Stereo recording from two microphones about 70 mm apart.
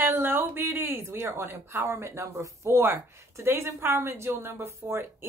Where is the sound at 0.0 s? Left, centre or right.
Right.